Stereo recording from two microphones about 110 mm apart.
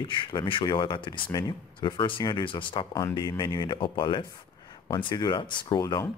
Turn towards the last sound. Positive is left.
turn(degrees=40)  # may be behind; listen again after turning